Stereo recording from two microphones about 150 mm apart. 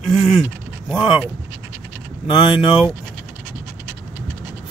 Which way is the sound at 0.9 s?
30° left (ahead or behind).